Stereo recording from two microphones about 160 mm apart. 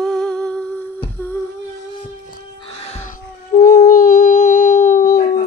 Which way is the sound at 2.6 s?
35° left (ahead or behind).